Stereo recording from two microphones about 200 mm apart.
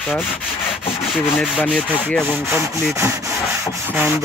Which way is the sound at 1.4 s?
5° left (ahead or behind).